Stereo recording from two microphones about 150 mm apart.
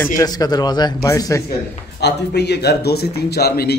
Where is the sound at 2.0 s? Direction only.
90° left.